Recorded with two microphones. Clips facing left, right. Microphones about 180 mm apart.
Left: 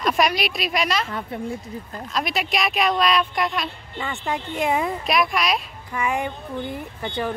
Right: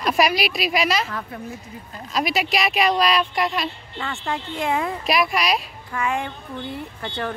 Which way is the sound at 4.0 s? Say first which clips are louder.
Left 1 dB; 15° left (ahead or behind).